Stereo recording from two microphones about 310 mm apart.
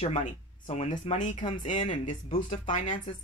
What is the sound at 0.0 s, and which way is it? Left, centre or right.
Speech, left.